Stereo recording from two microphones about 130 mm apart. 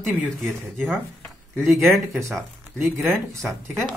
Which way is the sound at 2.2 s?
20° right (ahead or behind).